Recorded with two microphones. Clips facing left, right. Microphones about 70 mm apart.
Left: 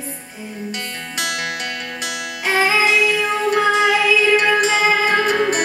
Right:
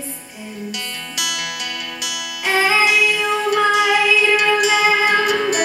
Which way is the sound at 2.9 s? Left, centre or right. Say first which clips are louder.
Even; left.